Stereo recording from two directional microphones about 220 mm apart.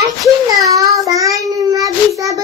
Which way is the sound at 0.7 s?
15° right (ahead or behind).